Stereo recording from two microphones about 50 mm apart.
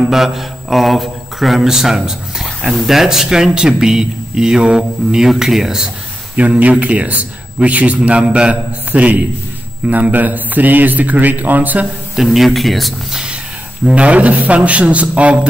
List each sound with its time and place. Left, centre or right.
0.1 s speech: centre
2.4 s a man's voice: centre
6.3 s a man's voice: right
12.2 s speech: centre
13.1 s a sound: centre
13.9 s speech: right